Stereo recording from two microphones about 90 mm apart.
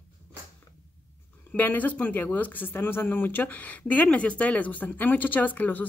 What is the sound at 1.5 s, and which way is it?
Speech, 20° left (ahead or behind).